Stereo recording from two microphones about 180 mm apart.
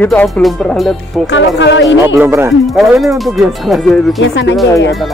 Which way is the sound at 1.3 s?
90° left.